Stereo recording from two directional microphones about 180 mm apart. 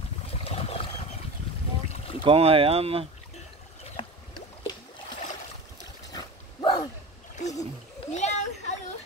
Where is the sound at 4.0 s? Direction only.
30° left (ahead or behind).